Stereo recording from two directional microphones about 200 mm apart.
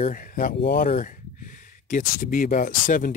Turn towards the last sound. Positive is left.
turn(degrees=45)  # may be behind; listen again after turning